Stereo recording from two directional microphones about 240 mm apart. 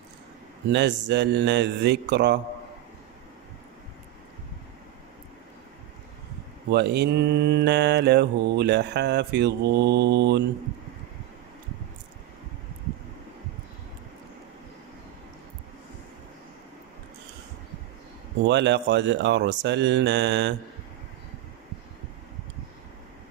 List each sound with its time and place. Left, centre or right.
0.7 s mantra: right
6.7 s mantra: right
18.5 s mantra: right